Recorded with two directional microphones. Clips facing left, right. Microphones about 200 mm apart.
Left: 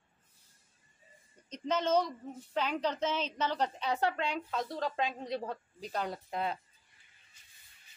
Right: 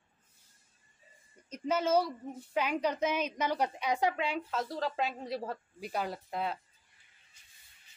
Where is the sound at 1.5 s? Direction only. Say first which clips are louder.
Right 1 dB; 10° right (ahead or behind).